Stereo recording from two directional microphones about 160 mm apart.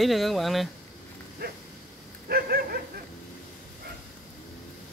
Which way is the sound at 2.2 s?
70° right (ahead or behind).